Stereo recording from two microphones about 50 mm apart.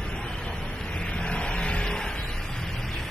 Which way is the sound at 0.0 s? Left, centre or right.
Centre.